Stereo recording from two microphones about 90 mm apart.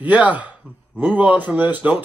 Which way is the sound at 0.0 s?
15° right (ahead or behind).